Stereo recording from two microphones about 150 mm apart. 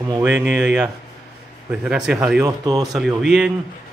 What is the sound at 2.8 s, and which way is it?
Speech, centre (ahead or behind).